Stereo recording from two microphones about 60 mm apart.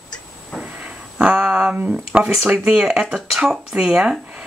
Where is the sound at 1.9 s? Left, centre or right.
Centre.